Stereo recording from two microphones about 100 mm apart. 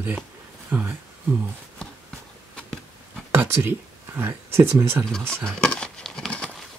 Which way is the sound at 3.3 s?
20° right (ahead or behind).